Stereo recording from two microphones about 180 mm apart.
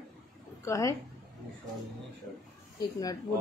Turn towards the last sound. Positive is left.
turn(degrees=20)  # may be behind; listen again after turning